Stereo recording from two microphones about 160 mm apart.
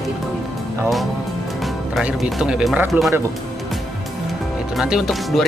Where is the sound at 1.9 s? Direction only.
5° right (ahead or behind).